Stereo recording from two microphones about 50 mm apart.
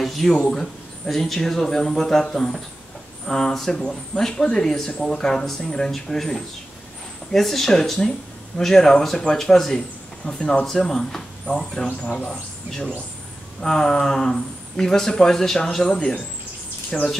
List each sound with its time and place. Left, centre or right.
0.0 s a sound: centre
0.3 s speech: centre
0.6 s speech: centre
13.6 s speech: centre